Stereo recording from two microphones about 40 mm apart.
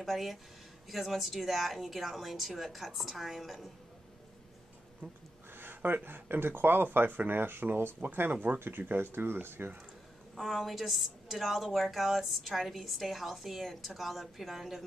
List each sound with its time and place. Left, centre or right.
0.0 s a woman's voice: centre
5.0 s speech: right
5.5 s a sound: right
5.8 s speech: right
6.0 s speech: right
8.0 s speech: right
8.5 s speech: right
10.3 s a woman's voice: centre